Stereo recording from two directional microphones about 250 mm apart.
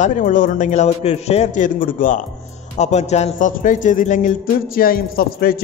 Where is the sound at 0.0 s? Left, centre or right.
Left.